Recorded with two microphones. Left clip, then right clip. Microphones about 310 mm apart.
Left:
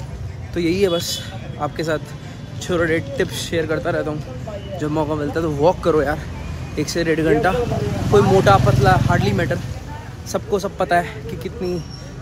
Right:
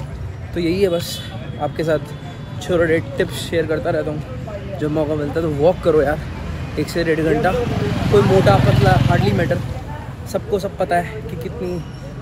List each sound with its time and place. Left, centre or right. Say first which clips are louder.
0.6 s speech: even; centre